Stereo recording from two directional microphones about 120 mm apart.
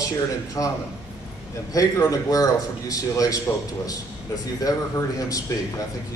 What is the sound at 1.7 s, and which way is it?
A man's voice, 30° left (ahead or behind).